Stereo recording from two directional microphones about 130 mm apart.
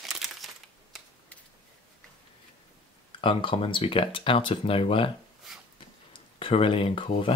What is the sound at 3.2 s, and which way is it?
Speech, 40° left (ahead or behind).